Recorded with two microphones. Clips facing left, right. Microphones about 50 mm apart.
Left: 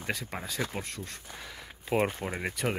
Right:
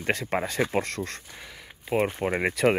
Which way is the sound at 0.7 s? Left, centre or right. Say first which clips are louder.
Right 10 dB; right.